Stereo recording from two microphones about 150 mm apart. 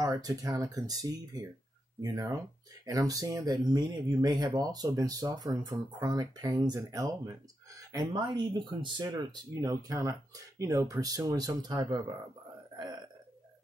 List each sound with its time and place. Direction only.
0.0 s speech: 25° right (ahead or behind)